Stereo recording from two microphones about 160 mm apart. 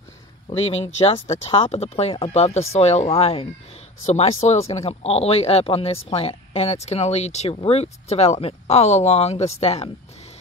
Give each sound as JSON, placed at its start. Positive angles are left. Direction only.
{"t": 0.5, "sound": "speech", "side_deg": 40}